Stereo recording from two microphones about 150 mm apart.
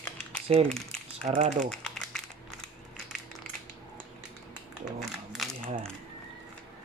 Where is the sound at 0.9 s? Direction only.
50° right (ahead or behind).